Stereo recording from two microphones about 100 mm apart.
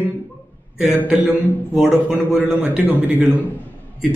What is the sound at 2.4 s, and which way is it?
Speech, 15° right (ahead or behind).